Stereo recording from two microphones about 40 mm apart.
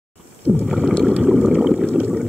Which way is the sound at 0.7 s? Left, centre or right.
Centre.